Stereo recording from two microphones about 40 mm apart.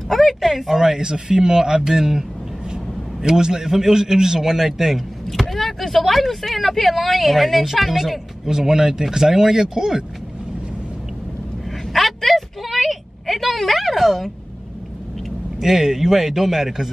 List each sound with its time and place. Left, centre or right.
0.1 s speech: centre
0.7 s a man's voice: centre
8.5 s speech: centre
11.9 s a sound: centre
15.6 s speech: centre